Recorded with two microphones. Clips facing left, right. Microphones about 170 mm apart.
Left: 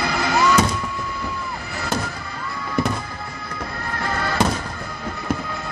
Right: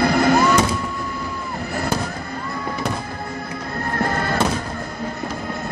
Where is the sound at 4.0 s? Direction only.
50° right (ahead or behind).